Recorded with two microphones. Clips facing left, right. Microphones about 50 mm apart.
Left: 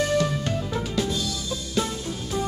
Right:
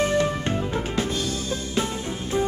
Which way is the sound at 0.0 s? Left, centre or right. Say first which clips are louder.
Right 1 dB; right.